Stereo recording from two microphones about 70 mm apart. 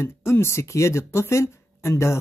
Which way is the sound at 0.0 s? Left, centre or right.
Left.